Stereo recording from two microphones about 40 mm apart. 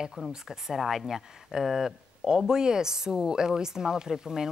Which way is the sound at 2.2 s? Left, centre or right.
Centre.